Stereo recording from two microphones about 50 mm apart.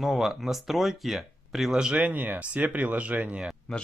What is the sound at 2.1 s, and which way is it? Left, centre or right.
Speech, right.